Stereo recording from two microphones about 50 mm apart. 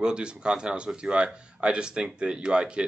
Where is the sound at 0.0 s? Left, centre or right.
Centre.